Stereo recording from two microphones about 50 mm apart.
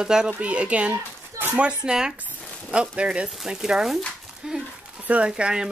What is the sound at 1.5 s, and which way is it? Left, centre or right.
Speech, centre.